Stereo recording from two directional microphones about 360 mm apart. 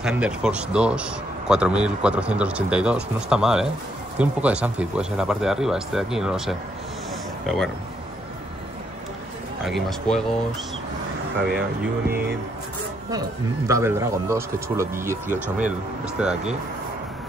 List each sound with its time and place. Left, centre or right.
0.0 s speech: centre
9.7 s speech: centre
12.1 s music: right
13.7 s speech: centre
15.3 s speech: centre